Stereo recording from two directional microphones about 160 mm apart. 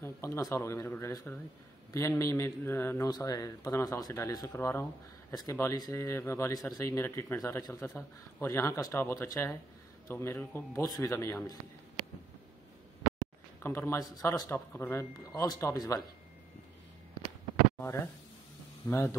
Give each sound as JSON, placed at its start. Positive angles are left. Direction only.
{"t": 0.0, "sound": "speech", "side_deg": 15}
{"t": 13.6, "sound": "speech", "side_deg": 15}
{"t": 17.7, "sound": "speech", "side_deg": 15}